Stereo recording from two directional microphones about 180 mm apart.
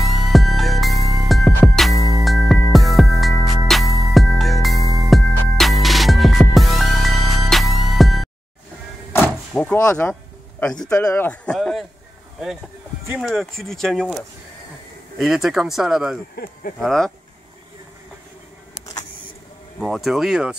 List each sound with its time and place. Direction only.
0.0 s music: centre (ahead or behind)
9.5 s door: 5° left (ahead or behind)
9.8 s speech: 10° left (ahead or behind)
13.1 s speech: centre (ahead or behind)
16.4 s speech: 55° left (ahead or behind)
16.8 s speech: centre (ahead or behind)
19.8 s speech: centre (ahead or behind)